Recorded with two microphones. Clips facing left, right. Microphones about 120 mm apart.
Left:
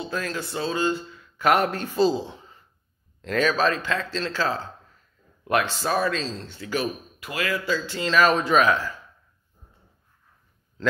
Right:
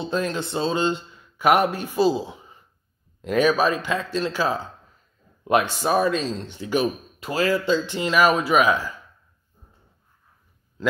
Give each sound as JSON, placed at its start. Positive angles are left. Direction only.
{"t": 0.0, "sound": "speech", "side_deg": -20}
{"t": 1.4, "sound": "a man's voice", "side_deg": -15}
{"t": 10.8, "sound": "a man's voice", "side_deg": -10}